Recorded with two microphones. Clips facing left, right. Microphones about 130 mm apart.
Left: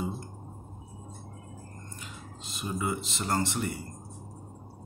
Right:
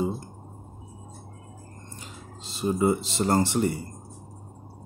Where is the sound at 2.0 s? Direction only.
30° right (ahead or behind).